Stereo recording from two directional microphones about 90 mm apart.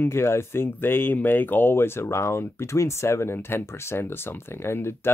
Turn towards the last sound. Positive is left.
turn(degrees=25)  # may be behind; listen again after turning